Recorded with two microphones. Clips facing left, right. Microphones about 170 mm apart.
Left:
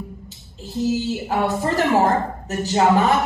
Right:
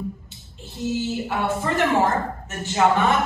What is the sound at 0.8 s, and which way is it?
Speech, 40° left (ahead or behind).